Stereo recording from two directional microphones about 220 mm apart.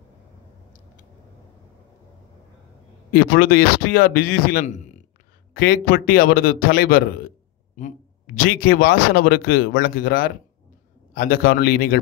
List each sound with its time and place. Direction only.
3.1 s a man's voice: 40° left (ahead or behind)